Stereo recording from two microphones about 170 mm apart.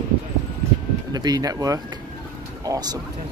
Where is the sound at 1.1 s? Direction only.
20° right (ahead or behind).